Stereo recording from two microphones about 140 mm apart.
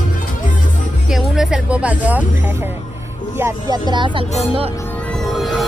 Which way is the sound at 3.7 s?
35° right (ahead or behind).